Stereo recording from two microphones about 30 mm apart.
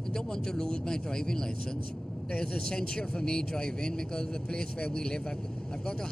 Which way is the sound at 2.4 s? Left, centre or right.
Left.